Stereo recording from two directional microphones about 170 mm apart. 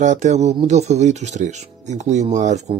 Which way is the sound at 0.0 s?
45° right (ahead or behind).